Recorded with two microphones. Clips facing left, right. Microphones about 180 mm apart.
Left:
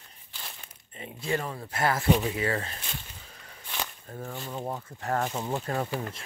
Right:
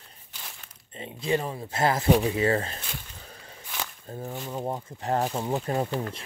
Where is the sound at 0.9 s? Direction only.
20° right (ahead or behind).